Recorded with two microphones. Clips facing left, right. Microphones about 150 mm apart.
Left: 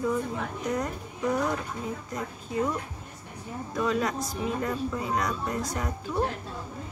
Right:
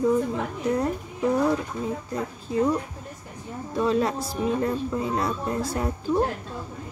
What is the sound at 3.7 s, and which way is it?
A woman's voice, 30° right (ahead or behind).